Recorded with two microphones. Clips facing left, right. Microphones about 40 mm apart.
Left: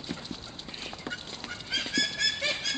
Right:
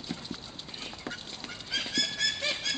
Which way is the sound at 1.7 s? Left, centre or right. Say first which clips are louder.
Left 2 dB; centre.